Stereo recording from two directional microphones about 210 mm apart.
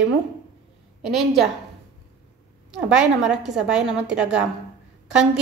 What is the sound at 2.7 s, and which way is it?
A woman's voice, 5° right (ahead or behind).